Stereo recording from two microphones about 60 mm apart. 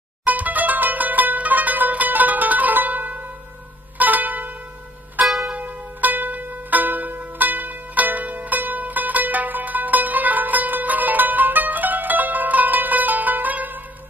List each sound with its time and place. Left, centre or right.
0.2 s music: right
5.2 s music: centre
5.5 s music: right